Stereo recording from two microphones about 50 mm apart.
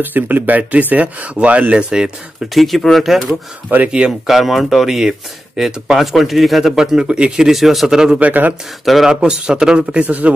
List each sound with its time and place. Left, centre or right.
0.0 s speech: right; by 2.1 s centre
2.5 s speech: centre
3.7 s speech: right
4.3 s speech: centre
7.4 s speech: centre
8.2 s speech: right
8.8 s speech: centre
10.0 s speech: right